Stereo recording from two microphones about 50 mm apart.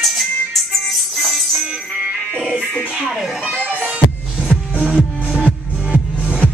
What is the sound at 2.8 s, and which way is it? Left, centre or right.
Music, centre.